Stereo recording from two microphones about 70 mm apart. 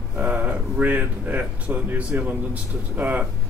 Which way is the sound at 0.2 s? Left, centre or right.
Right.